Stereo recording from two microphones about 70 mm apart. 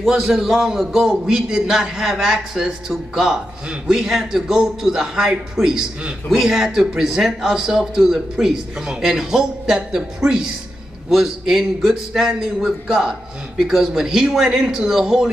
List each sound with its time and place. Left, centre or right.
0.0 s a man's voice: centre